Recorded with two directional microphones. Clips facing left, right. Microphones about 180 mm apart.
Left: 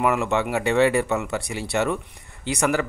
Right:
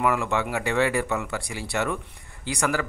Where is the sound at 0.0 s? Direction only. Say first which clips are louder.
Left 3 dB; 25° left (ahead or behind).